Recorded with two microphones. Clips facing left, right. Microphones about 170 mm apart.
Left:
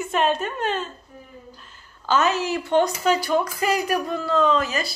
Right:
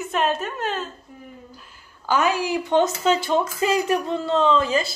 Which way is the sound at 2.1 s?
10° right (ahead or behind).